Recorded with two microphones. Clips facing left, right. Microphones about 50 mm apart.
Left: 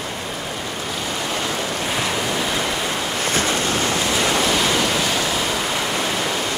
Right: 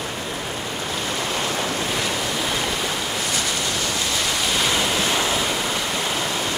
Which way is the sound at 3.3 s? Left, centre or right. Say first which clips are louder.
Left 4 dB; left.